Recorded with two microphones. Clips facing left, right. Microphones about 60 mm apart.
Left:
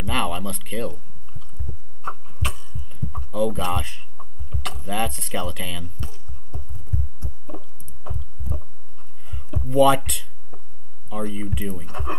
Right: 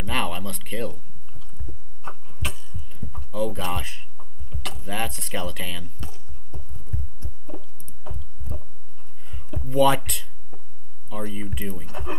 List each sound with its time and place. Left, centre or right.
0.0 s speech: centre
2.0 s heart sounds: centre
3.2 s speech: centre
7.2 s a sound: centre
9.3 s speech: centre
10.5 s a sound: left
11.1 s speech: centre